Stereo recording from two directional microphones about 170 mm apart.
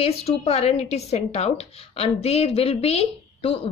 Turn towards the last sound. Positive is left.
turn(degrees=35)  # may be behind; listen again after turning